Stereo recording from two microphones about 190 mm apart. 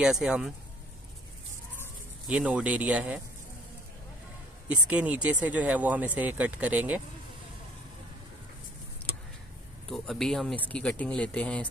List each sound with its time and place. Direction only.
0.0 s speech: 5° right (ahead or behind)
2.2 s speech: 5° right (ahead or behind)
4.6 s speech: 10° right (ahead or behind)
9.8 s speech: 5° left (ahead or behind)